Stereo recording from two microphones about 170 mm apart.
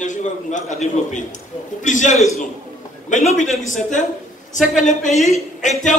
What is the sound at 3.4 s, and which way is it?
A man's voice, 45° left (ahead or behind).